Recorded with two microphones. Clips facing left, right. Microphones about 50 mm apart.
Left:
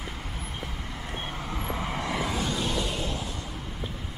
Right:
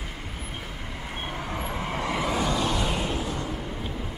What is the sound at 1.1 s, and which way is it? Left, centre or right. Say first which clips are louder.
Vehicle: right 3 dB; centre.